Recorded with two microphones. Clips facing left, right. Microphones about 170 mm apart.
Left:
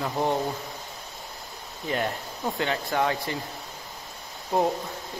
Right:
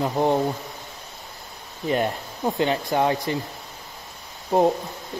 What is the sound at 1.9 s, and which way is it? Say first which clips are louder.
Speech: right 5 dB; 25° right (ahead or behind).